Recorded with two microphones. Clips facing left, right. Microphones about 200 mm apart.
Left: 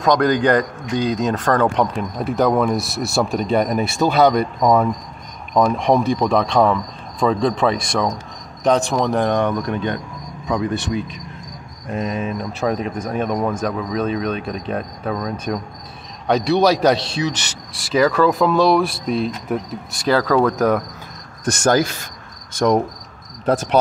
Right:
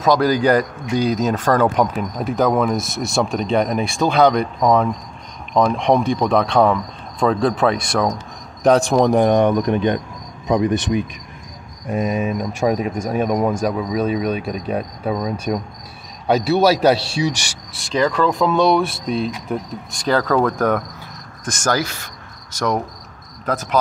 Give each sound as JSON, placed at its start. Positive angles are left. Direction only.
{"t": 0.0, "sound": "a man's voice", "side_deg": -5}
{"t": 17.7, "sound": "a man's voice", "side_deg": 5}